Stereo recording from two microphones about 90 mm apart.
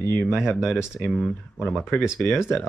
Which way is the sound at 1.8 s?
25° left (ahead or behind).